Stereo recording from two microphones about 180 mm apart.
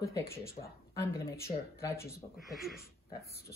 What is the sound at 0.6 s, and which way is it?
Speech, 40° left (ahead or behind).